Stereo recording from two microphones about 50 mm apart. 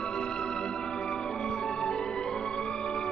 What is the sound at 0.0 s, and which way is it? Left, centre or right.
Music, centre.